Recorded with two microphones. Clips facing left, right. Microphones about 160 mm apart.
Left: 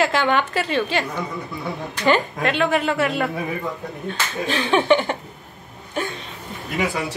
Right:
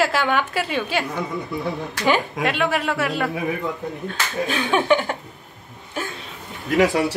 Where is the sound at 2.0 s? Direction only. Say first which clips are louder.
Left 1 dB; 5° right (ahead or behind).